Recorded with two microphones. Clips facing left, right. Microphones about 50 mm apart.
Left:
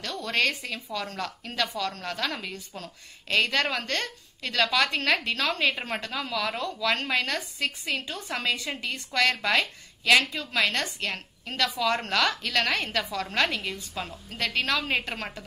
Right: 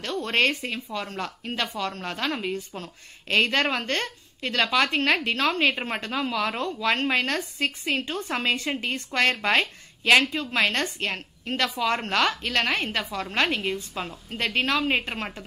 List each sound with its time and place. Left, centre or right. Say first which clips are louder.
0.0 s speech: right 3 dB; right